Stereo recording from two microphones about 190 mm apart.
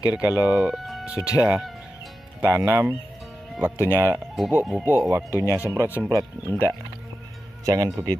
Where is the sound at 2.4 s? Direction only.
15° right (ahead or behind).